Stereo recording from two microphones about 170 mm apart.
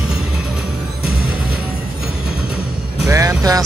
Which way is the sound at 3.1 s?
15° right (ahead or behind).